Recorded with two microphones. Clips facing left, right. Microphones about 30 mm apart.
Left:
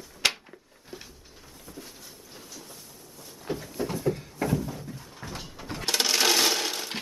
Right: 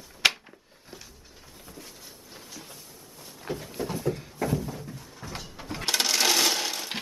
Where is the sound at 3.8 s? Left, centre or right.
Centre.